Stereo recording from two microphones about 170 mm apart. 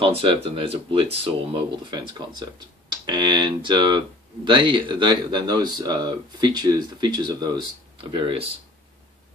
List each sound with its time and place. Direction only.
0.0 s speech: 30° right (ahead or behind)